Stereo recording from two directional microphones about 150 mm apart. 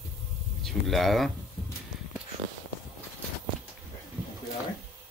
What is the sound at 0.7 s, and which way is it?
Speech, centre (ahead or behind).